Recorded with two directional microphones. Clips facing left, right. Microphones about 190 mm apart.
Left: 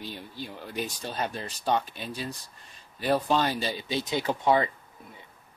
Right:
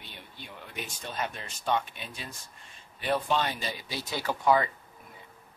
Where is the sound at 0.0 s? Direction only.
35° left (ahead or behind).